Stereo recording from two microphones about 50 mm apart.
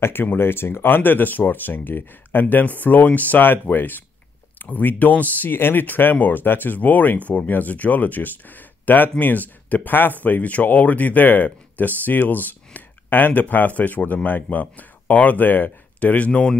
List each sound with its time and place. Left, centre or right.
0.0 s speech: left
16.3 s speech: centre